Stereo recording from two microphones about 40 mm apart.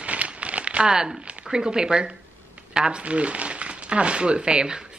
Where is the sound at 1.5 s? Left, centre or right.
Centre.